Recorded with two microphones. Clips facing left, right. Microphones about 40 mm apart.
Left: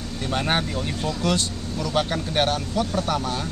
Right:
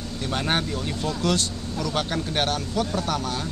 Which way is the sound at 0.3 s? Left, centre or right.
Centre.